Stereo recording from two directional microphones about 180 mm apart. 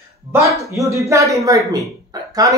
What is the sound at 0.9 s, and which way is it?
Speech, 15° right (ahead or behind).